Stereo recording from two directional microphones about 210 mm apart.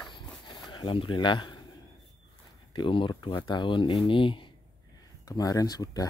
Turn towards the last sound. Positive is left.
turn(degrees=15)  # may be behind; listen again after turning